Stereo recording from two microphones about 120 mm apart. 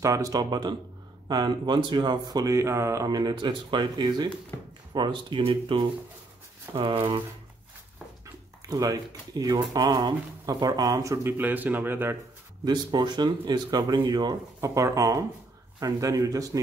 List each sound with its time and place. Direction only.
0.0 s speech: 30° right (ahead or behind); by 7.2 s 45° right (ahead or behind)
8.6 s speech: 30° right (ahead or behind)
11.3 s speech: 15° right (ahead or behind)
12.6 s speech: 40° right (ahead or behind)